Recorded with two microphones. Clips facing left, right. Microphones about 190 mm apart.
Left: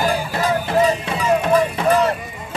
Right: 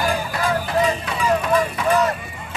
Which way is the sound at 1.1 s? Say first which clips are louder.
Left 3 dB; 30° left (ahead or behind).